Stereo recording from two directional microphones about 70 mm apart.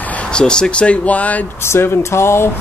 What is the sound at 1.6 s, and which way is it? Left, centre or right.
Speech, left.